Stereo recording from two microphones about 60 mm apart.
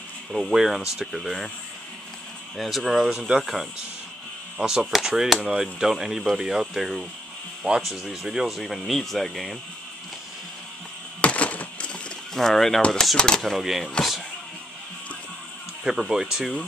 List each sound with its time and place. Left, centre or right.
0.3 s speech: centre
2.5 s speech: centre
3.2 s speech: centre
4.6 s speech: centre
11.1 s a sound: left
12.4 s speech: centre
15.8 s speech: centre